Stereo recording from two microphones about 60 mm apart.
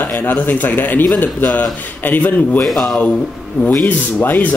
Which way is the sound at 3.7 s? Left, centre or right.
Left.